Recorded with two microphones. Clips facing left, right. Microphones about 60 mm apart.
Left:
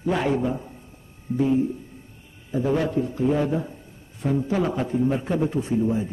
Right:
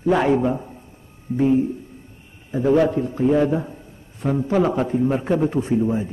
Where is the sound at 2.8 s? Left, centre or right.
Right.